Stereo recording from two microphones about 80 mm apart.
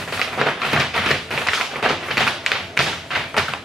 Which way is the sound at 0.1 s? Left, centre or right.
Centre.